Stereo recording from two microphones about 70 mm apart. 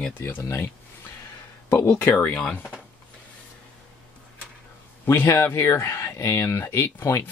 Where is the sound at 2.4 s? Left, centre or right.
Left.